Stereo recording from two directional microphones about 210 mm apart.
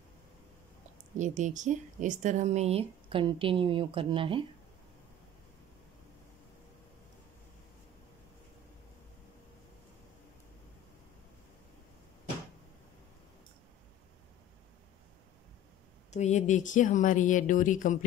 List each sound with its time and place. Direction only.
1.1 s a woman's voice: 35° right (ahead or behind)
16.1 s speech: 35° left (ahead or behind)